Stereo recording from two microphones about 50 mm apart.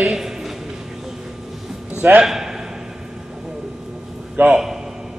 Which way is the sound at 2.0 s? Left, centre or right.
Right.